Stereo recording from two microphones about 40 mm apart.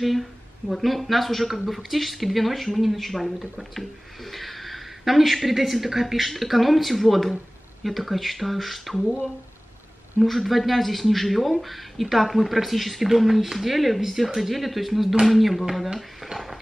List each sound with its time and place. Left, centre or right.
0.0 s speech: centre
10.2 s speech: centre